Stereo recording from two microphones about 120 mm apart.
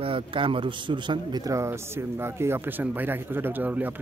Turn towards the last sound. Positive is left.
turn(degrees=-15)  # may be behind; listen again after turning